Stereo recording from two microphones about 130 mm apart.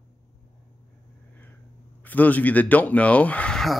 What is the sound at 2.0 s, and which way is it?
Speech, 15° left (ahead or behind).